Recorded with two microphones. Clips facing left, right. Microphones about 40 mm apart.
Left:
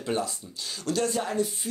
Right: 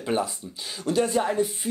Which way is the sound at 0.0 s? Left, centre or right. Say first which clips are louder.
Right 3 dB; centre.